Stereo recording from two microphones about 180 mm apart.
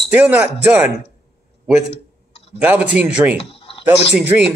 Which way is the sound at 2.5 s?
5° right (ahead or behind).